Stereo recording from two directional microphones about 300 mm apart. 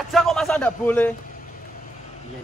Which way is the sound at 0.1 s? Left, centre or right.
Centre.